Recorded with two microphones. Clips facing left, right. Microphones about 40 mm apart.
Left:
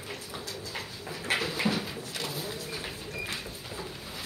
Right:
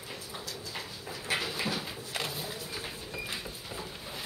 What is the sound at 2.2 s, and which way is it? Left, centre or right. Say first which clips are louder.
Bird: left 2 dB; centre.